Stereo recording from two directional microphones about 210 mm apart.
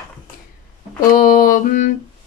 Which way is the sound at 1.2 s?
40° left (ahead or behind).